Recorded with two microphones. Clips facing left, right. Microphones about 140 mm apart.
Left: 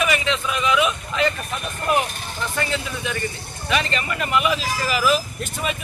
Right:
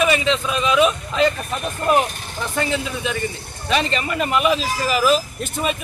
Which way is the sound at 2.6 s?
20° right (ahead or behind).